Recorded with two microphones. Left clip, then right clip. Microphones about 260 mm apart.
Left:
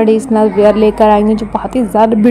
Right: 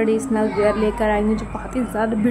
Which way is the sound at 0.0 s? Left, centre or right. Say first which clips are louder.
Left 9 dB; centre.